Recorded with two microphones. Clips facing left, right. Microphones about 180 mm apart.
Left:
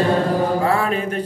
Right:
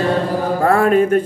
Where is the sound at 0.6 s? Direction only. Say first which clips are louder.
Right 7 dB; 50° right (ahead or behind).